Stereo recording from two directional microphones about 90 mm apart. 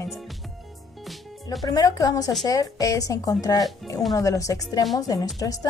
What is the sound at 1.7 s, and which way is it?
A woman's voice, 45° left (ahead or behind).